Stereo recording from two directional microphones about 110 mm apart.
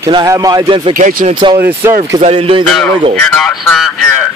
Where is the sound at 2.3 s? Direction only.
55° right (ahead or behind).